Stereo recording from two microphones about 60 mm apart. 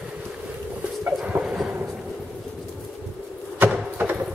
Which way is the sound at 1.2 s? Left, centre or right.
Right.